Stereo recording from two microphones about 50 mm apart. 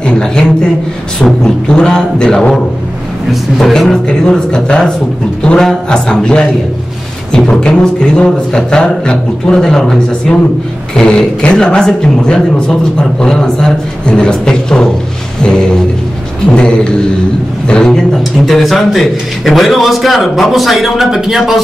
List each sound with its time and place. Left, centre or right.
0.0 s a man's voice: centre
3.3 s a man's voice: centre
7.5 s speech: centre
16.5 s a sound: centre
17.6 s a man's voice: centre